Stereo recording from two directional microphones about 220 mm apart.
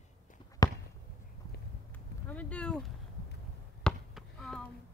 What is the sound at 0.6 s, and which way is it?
Basketball bounce, 15° left (ahead or behind).